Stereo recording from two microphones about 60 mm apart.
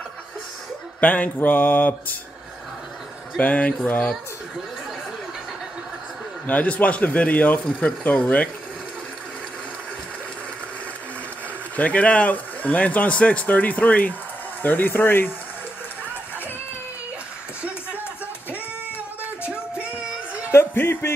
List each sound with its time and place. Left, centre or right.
1.0 s speech: left
3.3 s speech: left
6.4 s speech: left
11.7 s speech: left
19.5 s music: centre
20.7 s music: left